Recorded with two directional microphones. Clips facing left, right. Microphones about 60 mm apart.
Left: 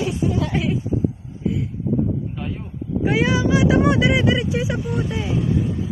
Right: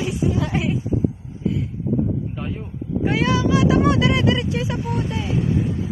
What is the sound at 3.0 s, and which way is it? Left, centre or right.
Speech, centre.